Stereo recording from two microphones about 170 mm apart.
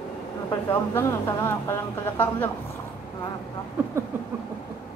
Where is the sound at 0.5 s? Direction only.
15° left (ahead or behind).